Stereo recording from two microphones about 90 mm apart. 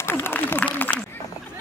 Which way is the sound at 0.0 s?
25° left (ahead or behind).